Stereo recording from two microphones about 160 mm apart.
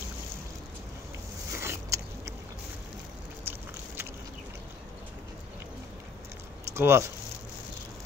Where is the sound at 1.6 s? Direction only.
15° right (ahead or behind).